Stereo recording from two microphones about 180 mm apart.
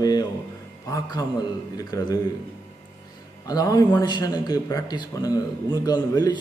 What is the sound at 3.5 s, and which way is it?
A man's voice, 20° left (ahead or behind).